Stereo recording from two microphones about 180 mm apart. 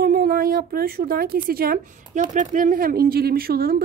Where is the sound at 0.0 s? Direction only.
55° right (ahead or behind).